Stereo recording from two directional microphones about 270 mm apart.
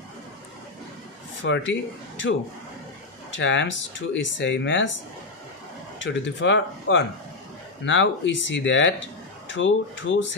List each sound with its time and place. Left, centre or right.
1.7 s speech: left
3.3 s speech: left
3.7 s speech: left
4.4 s speech: left
5.9 s speech: left